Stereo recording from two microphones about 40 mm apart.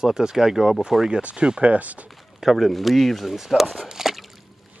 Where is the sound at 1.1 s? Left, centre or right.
Right.